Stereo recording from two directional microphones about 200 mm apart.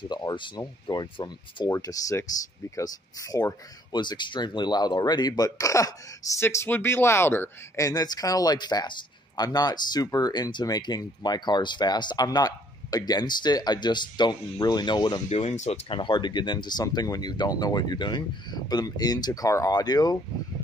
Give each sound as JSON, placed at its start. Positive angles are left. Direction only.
{"t": 0.1, "sound": "speech", "side_deg": 20}
{"t": 15.2, "sound": "speech", "side_deg": 30}